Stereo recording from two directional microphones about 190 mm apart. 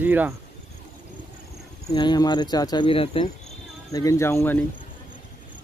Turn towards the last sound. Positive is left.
turn(degrees=15)  # may be behind; listen again after turning